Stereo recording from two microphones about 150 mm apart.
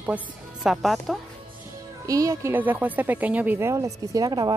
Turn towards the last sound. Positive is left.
turn(degrees=-25)  # may be behind; listen again after turning